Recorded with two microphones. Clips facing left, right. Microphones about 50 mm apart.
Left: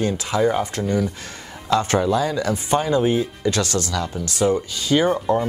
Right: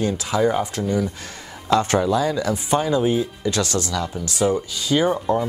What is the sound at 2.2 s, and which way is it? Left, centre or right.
Speech, left.